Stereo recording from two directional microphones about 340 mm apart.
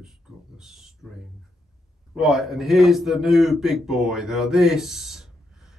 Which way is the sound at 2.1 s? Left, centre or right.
Centre.